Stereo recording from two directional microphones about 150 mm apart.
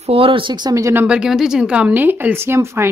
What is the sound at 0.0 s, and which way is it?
Speech, 40° right (ahead or behind).